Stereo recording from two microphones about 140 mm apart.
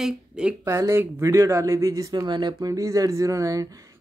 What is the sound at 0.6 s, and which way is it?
Speech, 20° right (ahead or behind).